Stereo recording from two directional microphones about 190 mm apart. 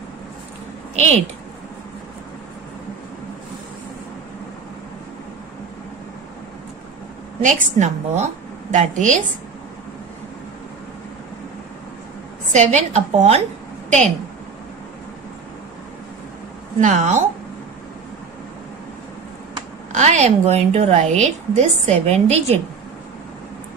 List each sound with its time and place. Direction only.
0.9 s speech: 35° right (ahead or behind)
7.4 s a woman's voice: 35° right (ahead or behind)
12.5 s a woman's voice: 35° right (ahead or behind)
16.8 s a woman's voice: 40° right (ahead or behind)
19.9 s a woman's voice: 40° right (ahead or behind)